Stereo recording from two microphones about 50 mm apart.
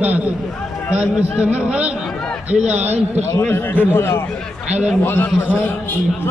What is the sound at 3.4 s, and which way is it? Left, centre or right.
Speech, left.